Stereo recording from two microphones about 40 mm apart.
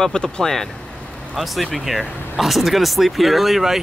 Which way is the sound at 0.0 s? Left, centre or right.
Centre.